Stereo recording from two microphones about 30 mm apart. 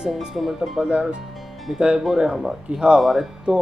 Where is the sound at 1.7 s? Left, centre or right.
Right.